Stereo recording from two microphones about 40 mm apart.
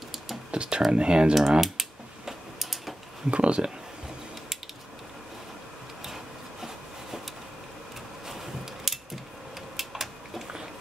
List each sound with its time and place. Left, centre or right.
0.5 s computer keyboard: right
0.9 s speech: right
1.6 s tick-tock: centre
3.3 s speech: right
6.6 s wood: centre
8.3 s a sound: centre